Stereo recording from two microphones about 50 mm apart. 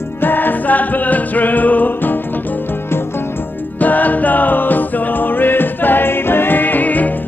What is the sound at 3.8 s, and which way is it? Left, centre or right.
Music, left.